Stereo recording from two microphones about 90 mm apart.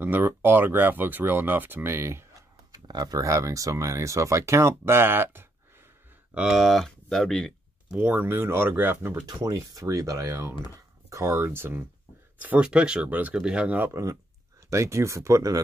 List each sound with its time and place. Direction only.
0.0 s speech: 20° right (ahead or behind)
2.9 s speech: 45° right (ahead or behind); by 5.5 s 25° right (ahead or behind)
6.3 s speech: 5° right (ahead or behind)
7.9 s speech: 15° right (ahead or behind)
9.1 s speech: 40° right (ahead or behind); by 11.8 s 25° right (ahead or behind)
12.4 s speech: 15° right (ahead or behind)
13.7 s speech: 25° right (ahead or behind)